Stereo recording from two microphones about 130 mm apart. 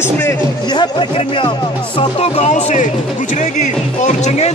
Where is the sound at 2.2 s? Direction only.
55° left (ahead or behind).